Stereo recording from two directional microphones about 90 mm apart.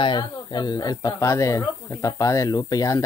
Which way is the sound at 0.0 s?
55° left (ahead or behind).